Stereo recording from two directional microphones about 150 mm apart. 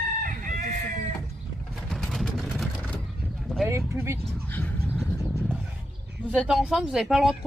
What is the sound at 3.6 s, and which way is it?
Speech, 20° right (ahead or behind).